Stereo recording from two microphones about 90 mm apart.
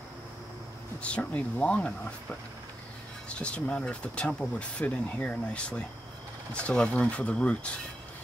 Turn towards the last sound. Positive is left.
turn(degrees=15)  # may be behind; listen again after turning